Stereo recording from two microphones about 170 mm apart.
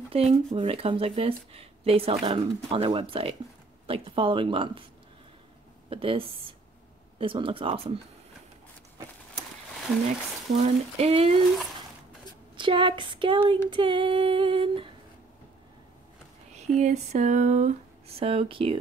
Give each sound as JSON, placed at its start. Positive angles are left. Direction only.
{"t": 0.1, "sound": "speech", "side_deg": -35}
{"t": 5.9, "sound": "speech", "side_deg": -30}
{"t": 10.6, "sound": "speech", "side_deg": -35}
{"t": 12.5, "sound": "female singing", "side_deg": -30}
{"t": 16.6, "sound": "speech", "side_deg": -45}